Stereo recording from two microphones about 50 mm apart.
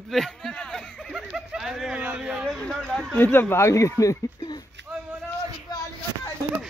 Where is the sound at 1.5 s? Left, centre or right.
Centre.